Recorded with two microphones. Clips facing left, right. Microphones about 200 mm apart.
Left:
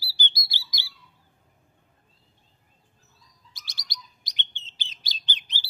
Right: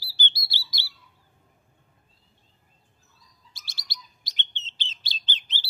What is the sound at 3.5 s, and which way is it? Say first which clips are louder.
Bird: left 1 dB; 15° left (ahead or behind).